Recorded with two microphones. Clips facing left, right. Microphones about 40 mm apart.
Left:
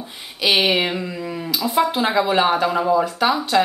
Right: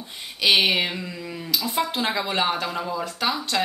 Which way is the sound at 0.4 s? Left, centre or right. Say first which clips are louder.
Left 2 dB; centre.